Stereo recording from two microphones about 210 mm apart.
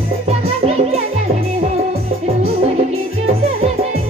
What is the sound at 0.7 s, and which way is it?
Music, 30° right (ahead or behind).